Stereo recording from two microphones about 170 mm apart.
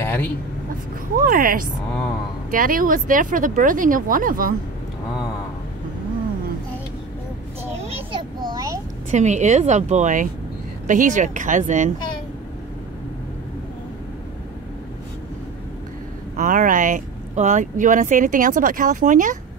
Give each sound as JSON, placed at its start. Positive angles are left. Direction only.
{"t": 0.0, "sound": "vehicle", "side_deg": 10}
{"t": 1.2, "sound": "speech", "side_deg": -55}
{"t": 7.8, "sound": "a sound", "side_deg": -30}
{"t": 9.1, "sound": "speech", "side_deg": -45}
{"t": 16.3, "sound": "speech", "side_deg": -50}